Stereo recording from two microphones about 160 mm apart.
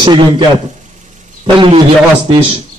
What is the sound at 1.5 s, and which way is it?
Speech, 35° right (ahead or behind).